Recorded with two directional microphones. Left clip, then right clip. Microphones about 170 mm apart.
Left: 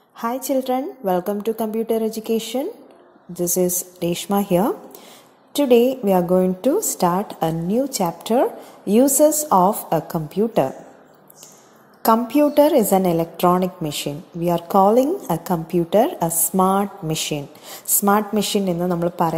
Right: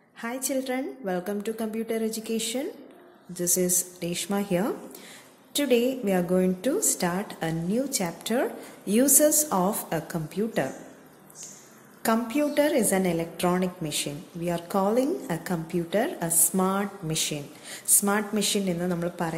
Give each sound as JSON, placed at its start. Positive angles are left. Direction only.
{"t": 0.2, "sound": "a woman's voice", "side_deg": 30}
{"t": 12.0, "sound": "a woman's voice", "side_deg": 30}